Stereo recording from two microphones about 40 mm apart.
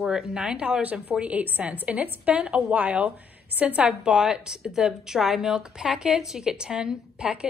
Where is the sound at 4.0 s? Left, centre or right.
Centre.